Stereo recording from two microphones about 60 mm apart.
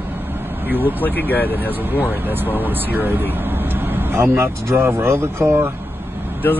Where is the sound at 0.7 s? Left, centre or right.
Right.